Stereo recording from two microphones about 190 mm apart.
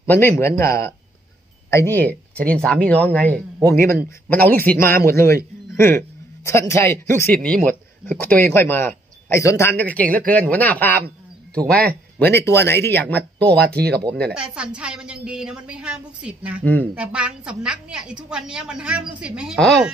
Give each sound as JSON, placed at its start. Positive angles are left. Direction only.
{"t": 0.0, "sound": "a man's voice", "side_deg": 10}
{"t": 13.6, "sound": "speech", "side_deg": -60}
{"t": 14.2, "sound": "a woman's voice", "side_deg": -5}